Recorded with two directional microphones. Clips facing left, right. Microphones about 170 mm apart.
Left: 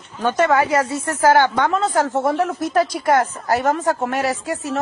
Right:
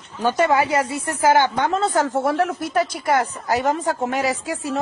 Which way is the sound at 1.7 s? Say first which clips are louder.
Left 1 dB; 30° right (ahead or behind).